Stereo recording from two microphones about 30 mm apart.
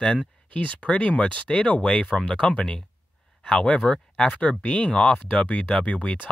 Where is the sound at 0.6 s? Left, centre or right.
Left.